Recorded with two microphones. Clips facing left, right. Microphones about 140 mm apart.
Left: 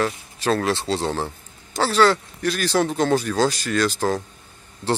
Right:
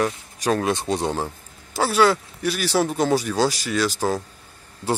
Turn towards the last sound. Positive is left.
turn(degrees=-10)  # may be behind; listen again after turning